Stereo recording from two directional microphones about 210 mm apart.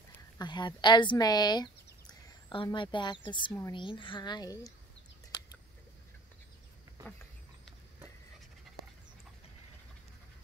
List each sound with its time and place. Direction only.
0.4 s a child's voice: 20° left (ahead or behind)